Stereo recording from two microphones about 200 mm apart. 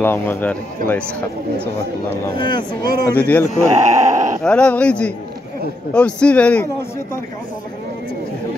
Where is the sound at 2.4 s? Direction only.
25° left (ahead or behind).